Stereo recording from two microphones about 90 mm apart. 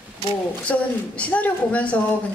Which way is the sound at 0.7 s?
15° left (ahead or behind).